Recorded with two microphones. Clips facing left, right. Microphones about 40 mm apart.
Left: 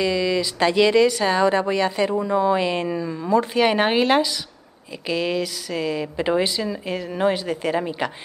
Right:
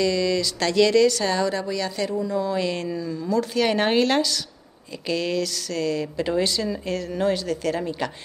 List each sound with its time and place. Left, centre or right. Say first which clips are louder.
0.0 s speech: left 1 dB; centre